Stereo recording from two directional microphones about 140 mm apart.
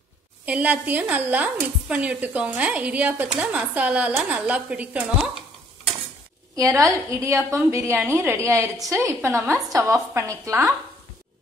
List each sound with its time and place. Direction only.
0.5 s a woman's voice: 10° right (ahead or behind)
6.5 s a woman's voice: 25° right (ahead or behind)